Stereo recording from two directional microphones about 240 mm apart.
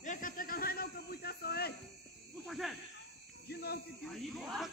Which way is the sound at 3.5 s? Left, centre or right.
Left.